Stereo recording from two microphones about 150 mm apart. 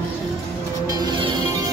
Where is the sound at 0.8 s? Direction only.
25° right (ahead or behind).